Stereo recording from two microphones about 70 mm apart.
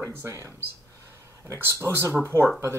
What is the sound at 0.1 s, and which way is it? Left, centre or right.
Speech, right.